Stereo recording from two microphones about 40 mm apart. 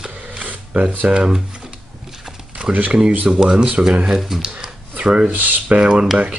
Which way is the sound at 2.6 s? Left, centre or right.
Right.